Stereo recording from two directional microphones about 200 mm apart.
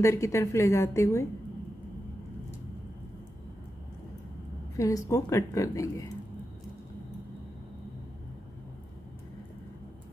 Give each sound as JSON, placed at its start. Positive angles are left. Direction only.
{"t": 0.0, "sound": "a woman's voice", "side_deg": 15}
{"t": 4.7, "sound": "a woman's voice", "side_deg": 15}